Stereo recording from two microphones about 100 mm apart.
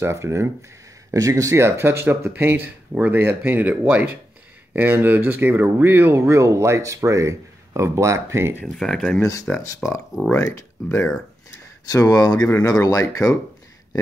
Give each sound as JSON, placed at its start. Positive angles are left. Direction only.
{"t": 0.0, "sound": "speech", "side_deg": -30}
{"t": 8.7, "sound": "speech", "side_deg": 5}
{"t": 10.3, "sound": "speech", "side_deg": 35}